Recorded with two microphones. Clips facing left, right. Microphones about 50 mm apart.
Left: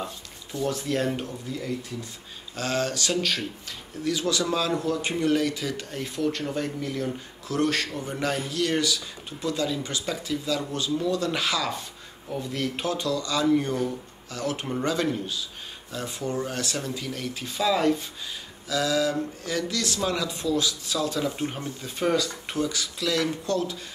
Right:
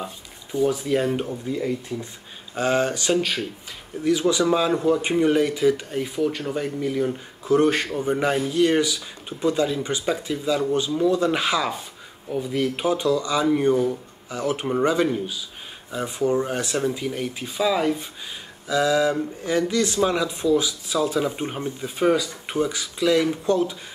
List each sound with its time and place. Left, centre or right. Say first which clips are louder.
0.0 s speech: right 1 dB; centre
7.4 s speech: right 7 dB; right
21.8 s speech: right 4 dB; centre